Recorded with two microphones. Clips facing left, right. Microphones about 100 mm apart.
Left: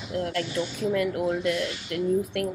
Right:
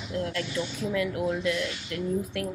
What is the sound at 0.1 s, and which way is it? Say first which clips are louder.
A woman's voice: left 2 dB; 40° left (ahead or behind).